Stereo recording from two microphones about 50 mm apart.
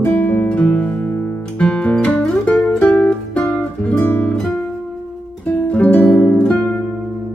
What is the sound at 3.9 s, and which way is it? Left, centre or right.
Guitar, left.